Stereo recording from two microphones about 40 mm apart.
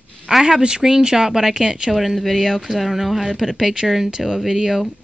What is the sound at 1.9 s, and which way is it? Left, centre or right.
Speech, centre.